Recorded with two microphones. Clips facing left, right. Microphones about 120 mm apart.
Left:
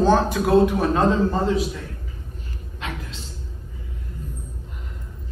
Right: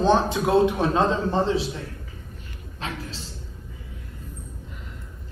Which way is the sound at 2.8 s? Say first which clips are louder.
Even; 35° right (ahead or behind).